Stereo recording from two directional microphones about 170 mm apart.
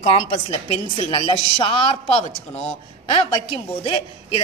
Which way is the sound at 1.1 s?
30° left (ahead or behind).